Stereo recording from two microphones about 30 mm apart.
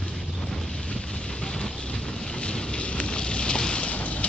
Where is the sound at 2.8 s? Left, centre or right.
Left.